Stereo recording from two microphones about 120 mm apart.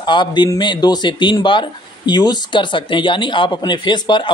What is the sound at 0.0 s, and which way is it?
Speech, 40° left (ahead or behind).